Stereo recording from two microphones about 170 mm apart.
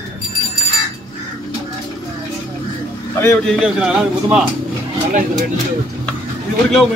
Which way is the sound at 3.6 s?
5° right (ahead or behind).